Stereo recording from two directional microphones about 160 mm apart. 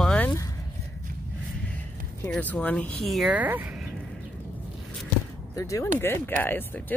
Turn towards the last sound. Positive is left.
turn(degrees=10)  # may be behind; listen again after turning